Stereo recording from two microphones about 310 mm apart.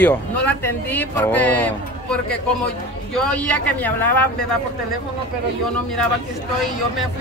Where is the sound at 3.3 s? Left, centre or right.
Centre.